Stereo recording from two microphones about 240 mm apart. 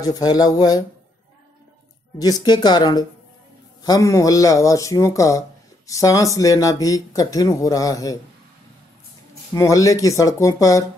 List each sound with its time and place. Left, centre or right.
0.0 s speech: centre
2.1 s speech: centre
9.5 s speech: centre